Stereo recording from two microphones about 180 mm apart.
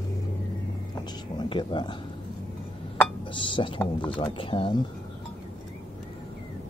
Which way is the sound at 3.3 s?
30° left (ahead or behind).